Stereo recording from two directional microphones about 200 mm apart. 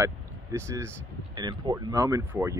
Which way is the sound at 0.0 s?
15° right (ahead or behind).